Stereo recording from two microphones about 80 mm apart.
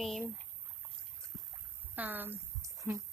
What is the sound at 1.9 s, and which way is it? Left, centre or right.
Speech, right.